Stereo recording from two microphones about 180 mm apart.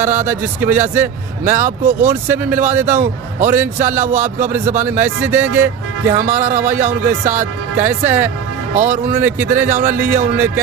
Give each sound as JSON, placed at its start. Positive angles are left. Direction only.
{"t": 0.0, "sound": "a man's voice", "side_deg": -10}
{"t": 3.0, "sound": "a man's voice", "side_deg": -50}
{"t": 3.5, "sound": "a man's voice", "side_deg": -10}
{"t": 4.0, "sound": "a man's voice", "side_deg": -45}
{"t": 4.9, "sound": "a man's voice", "side_deg": -10}
{"t": 8.7, "sound": "a man's voice", "side_deg": -40}
{"t": 9.1, "sound": "a man's voice", "side_deg": -10}